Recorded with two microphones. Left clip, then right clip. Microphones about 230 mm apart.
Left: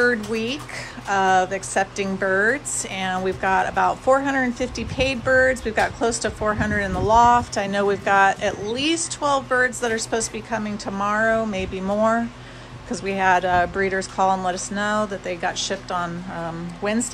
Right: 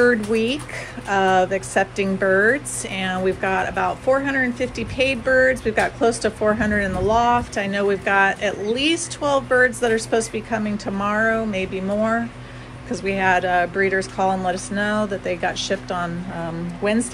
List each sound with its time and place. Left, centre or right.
0.0 s speech: centre